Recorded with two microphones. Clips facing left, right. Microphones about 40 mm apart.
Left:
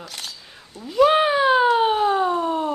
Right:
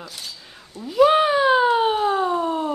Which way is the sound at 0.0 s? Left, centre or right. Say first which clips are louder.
Left 1 dB; left.